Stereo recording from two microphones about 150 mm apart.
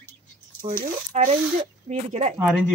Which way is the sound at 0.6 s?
45° right (ahead or behind).